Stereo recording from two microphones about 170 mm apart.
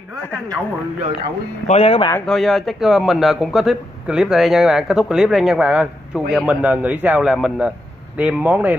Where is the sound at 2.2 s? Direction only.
Centre (ahead or behind).